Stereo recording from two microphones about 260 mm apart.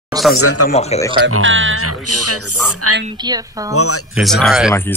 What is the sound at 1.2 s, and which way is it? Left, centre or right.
Speech, right.